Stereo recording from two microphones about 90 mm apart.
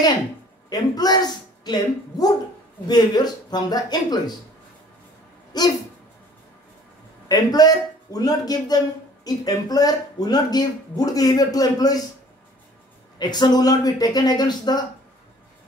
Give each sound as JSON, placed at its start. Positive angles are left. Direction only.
{"t": 0.7, "sound": "speech", "side_deg": 50}
{"t": 5.5, "sound": "speech", "side_deg": 50}
{"t": 7.2, "sound": "speech", "side_deg": 45}
{"t": 13.2, "sound": "speech", "side_deg": 50}